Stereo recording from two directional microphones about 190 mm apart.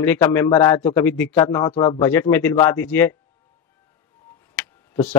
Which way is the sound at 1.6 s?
25° left (ahead or behind).